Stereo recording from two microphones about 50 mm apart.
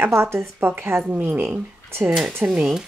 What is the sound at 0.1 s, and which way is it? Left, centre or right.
Speech, right.